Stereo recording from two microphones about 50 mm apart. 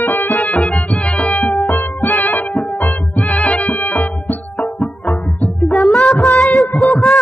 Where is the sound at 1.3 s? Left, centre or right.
Centre.